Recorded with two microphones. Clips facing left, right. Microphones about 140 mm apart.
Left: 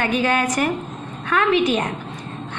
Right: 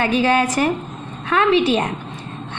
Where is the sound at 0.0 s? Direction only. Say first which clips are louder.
Right 3 dB; 30° right (ahead or behind).